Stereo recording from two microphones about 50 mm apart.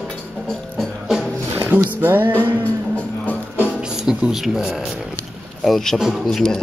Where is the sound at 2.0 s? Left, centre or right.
Right.